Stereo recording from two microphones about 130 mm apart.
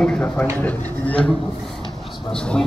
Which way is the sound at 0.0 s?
10° left (ahead or behind).